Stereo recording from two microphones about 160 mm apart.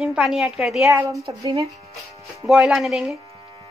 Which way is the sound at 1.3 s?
30° right (ahead or behind).